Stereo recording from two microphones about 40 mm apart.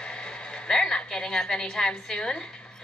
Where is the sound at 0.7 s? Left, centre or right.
Centre.